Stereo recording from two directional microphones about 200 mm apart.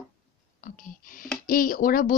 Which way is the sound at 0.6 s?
45° left (ahead or behind).